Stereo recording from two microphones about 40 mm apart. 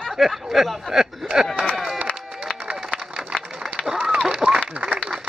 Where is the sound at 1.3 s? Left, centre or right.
Centre.